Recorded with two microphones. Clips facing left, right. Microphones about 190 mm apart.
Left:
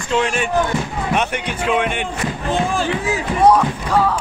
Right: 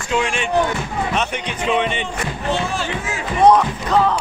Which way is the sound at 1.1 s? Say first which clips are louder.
Left 2 dB; 10° left (ahead or behind).